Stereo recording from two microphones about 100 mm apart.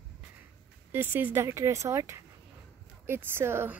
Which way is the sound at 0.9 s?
20° right (ahead or behind).